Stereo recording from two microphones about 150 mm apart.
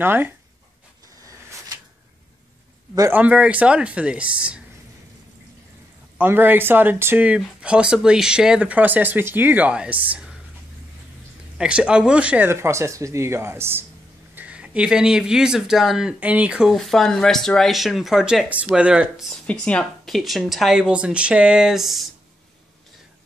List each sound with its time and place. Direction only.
0.0 s speech: 15° right (ahead or behind)
2.9 s speech: 15° right (ahead or behind)
6.1 s speech: 15° right (ahead or behind)
11.5 s speech: 5° right (ahead or behind)
19.4 s speech: 10° left (ahead or behind)